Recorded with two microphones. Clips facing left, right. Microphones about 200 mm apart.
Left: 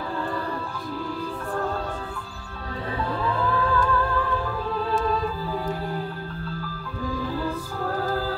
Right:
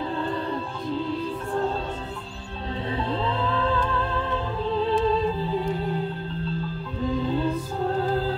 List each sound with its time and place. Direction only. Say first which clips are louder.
0.2 s music: right 1 dB; 25° right (ahead or behind)
3.0 s music: left 1 dB; 25° right (ahead or behind)